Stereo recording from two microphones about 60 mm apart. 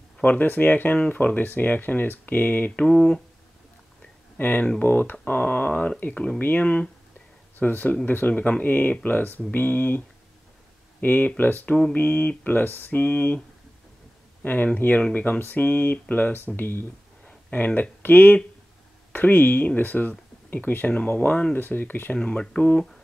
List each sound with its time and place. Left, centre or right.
0.2 s speech: left
2.7 s a sound: centre
4.4 s speech: left
14.4 s speech: left
22.1 s speech: centre